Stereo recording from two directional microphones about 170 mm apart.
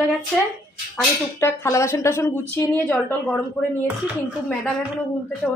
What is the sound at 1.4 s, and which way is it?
A woman's voice, 15° left (ahead or behind).